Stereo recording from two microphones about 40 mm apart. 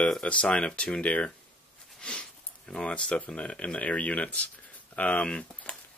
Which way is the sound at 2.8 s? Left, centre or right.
Left.